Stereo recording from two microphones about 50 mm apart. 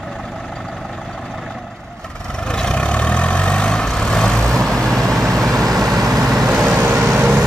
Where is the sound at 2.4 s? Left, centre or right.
Centre.